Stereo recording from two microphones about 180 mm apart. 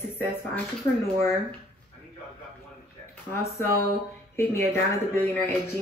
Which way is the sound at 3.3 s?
15° left (ahead or behind).